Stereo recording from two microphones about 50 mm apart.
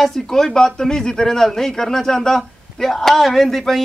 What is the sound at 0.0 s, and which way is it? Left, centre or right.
Speech, centre.